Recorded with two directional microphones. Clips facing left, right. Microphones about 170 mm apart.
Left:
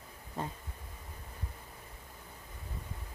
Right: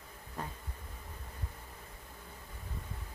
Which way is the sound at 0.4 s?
25° left (ahead or behind).